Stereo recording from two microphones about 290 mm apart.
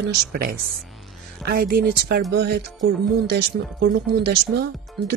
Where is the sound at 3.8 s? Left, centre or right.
Right.